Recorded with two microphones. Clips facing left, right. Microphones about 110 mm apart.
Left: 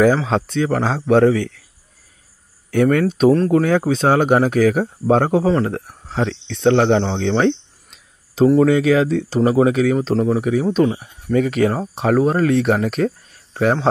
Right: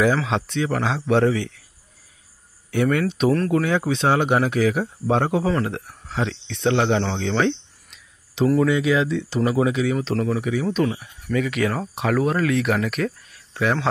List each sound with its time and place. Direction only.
0.0 s speech: 40° left (ahead or behind)
2.7 s speech: 45° left (ahead or behind)
3.3 s speech: 30° left (ahead or behind)
3.6 s speech: 40° left (ahead or behind)
6.1 s speech: 40° left (ahead or behind)
7.2 s cricket: 40° left (ahead or behind)
8.6 s speech: 45° left (ahead or behind)
9.9 s speech: 30° left (ahead or behind)